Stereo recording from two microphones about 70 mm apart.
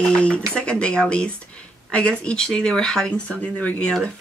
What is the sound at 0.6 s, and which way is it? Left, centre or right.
Speech, centre.